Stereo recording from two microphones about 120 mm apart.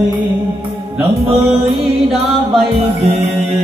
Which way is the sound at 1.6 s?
Centre (ahead or behind).